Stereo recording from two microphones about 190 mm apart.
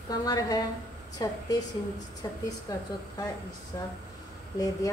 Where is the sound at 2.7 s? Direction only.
20° left (ahead or behind).